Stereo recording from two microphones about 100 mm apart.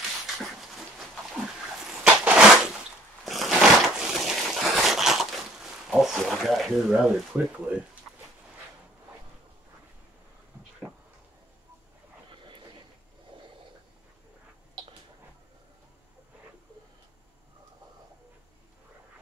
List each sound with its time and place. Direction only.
0.4 s dog: centre (ahead or behind)
2.0 s crushing: 15° right (ahead or behind)
3.3 s a sound: centre (ahead or behind)
6.9 s speech: 10° right (ahead or behind)